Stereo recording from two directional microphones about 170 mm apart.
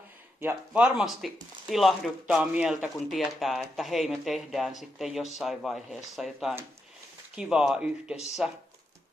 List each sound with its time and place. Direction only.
0.4 s speech: 10° right (ahead or behind)